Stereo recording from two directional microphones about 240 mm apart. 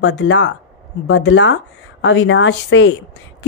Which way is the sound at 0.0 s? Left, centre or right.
Left.